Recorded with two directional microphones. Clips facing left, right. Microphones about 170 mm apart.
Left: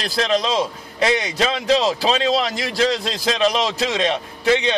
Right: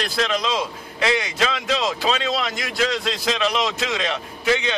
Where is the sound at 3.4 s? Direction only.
35° left (ahead or behind).